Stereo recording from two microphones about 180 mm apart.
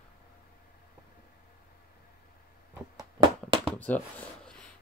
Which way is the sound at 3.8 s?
10° left (ahead or behind).